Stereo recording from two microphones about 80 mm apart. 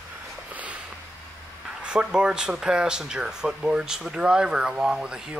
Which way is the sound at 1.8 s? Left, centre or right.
Centre.